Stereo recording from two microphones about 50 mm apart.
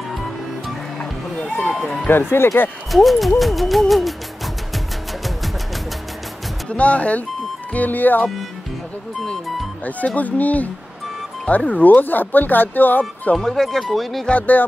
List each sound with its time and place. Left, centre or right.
1.7 s music: centre
2.3 s speech: left
2.9 s music: centre
6.7 s speech: left
9.8 s speech: left
13.4 s music: centre